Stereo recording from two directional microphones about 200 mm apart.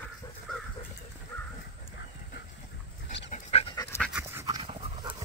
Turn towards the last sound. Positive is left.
turn(degrees=-25)  # may be behind; listen again after turning